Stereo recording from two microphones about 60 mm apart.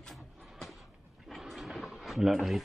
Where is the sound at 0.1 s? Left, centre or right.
Centre.